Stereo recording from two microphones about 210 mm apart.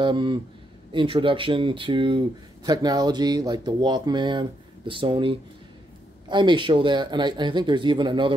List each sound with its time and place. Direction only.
0.0 s speech: 20° right (ahead or behind)